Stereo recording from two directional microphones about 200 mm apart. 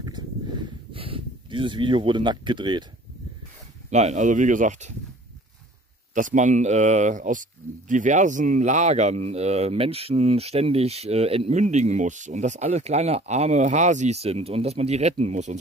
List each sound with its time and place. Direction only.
0.9 s speech: 25° right (ahead or behind)
3.9 s speech: 35° right (ahead or behind)
6.1 s speech: 40° right (ahead or behind)